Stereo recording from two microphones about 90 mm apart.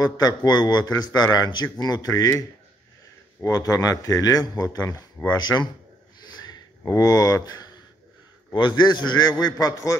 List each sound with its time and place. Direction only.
0.0 s a man's voice: 45° left (ahead or behind)
3.4 s a man's voice: 40° left (ahead or behind)
6.8 s speech: 40° left (ahead or behind)
8.5 s a man's voice: 55° left (ahead or behind); by 9.9 s 40° left (ahead or behind)